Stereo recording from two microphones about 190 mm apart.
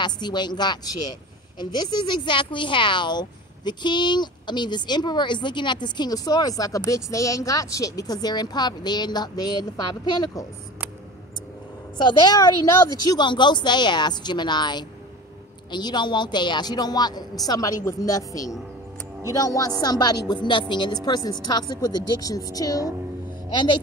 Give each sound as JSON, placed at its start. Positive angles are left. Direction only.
{"t": 0.0, "sound": "speech", "side_deg": 25}
{"t": 12.0, "sound": "a woman's voice", "side_deg": 20}